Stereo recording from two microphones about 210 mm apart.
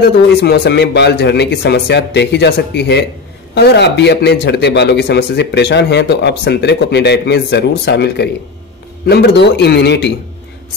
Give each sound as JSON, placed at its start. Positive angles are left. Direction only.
{"t": 0.4, "sound": "speech", "side_deg": 50}